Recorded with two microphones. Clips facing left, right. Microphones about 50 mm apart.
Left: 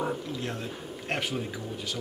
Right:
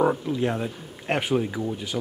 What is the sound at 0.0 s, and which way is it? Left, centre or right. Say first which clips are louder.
Speech: right 9 dB; right.